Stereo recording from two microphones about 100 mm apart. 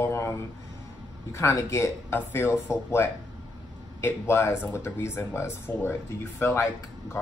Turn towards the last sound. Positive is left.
turn(degrees=25)  # may be behind; listen again after turning